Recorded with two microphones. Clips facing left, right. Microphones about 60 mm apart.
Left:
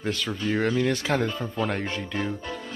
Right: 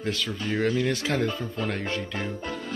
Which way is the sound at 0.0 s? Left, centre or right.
Centre.